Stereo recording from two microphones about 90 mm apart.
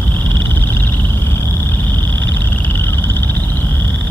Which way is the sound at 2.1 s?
25° left (ahead or behind).